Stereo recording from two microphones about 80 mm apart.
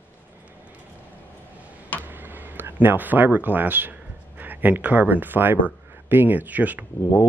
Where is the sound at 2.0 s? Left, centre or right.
Right.